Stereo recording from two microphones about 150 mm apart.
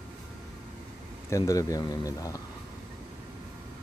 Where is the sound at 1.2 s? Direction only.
20° left (ahead or behind).